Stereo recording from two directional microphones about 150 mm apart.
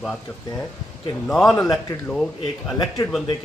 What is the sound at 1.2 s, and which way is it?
Speech, 5° left (ahead or behind).